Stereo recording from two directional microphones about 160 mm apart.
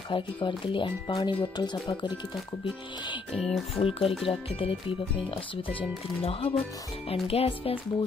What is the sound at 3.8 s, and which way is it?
Speech, 35° left (ahead or behind).